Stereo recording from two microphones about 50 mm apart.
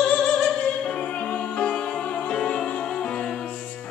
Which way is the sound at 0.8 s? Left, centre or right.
Centre.